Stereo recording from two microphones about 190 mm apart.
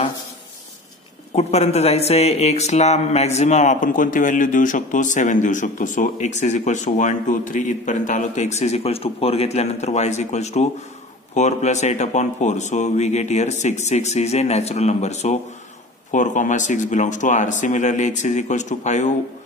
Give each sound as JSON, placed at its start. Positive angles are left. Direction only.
{"t": 1.3, "sound": "speech", "side_deg": 35}